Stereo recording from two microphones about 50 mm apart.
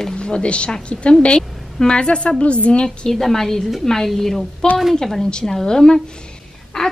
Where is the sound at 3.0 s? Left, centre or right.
Centre.